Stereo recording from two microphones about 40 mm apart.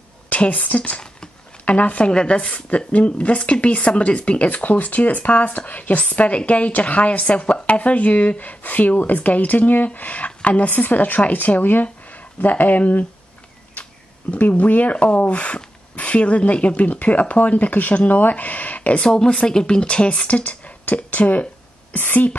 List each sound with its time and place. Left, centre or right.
0.3 s a woman's voice: left
10.7 s speech: left
14.3 s speech: left
19.0 s a woman's voice: centre
20.2 s speech: left
21.9 s speech: left